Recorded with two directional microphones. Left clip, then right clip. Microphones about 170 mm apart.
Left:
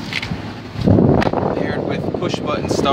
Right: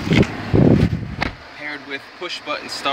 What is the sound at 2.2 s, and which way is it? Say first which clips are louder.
Speech: left 3 dB; 15° left (ahead or behind).